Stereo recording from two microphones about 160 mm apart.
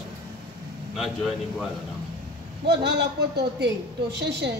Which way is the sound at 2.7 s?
90° right.